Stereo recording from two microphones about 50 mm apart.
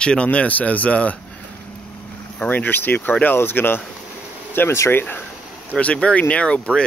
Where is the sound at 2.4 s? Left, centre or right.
Left.